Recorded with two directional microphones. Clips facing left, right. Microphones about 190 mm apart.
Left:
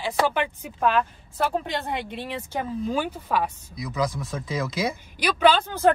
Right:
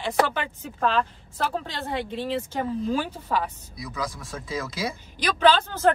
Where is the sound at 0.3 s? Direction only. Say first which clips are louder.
Left 4 dB; 15° left (ahead or behind).